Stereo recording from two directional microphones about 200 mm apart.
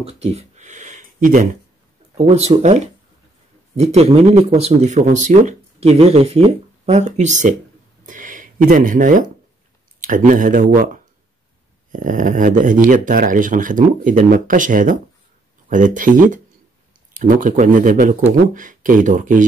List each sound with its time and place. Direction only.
0.0 s speech: 30° right (ahead or behind)
2.1 s speech: 30° right (ahead or behind)
8.0 s a sound: 40° right (ahead or behind)
9.9 s speech: 40° right (ahead or behind)